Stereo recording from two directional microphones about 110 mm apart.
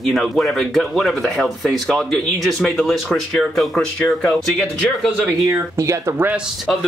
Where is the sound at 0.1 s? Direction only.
Centre (ahead or behind).